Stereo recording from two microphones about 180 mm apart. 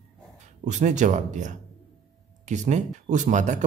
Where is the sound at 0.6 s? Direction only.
40° right (ahead or behind).